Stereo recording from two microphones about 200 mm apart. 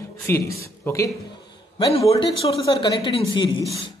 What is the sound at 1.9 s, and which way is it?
Speech, 30° left (ahead or behind).